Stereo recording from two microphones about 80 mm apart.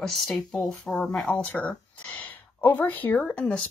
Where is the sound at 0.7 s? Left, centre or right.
Centre.